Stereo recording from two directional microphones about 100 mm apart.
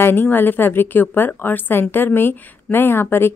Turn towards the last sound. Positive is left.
turn(degrees=25)  # may be behind; listen again after turning